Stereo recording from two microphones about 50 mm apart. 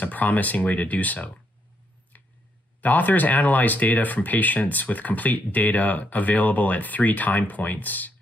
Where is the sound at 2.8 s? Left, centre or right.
Left.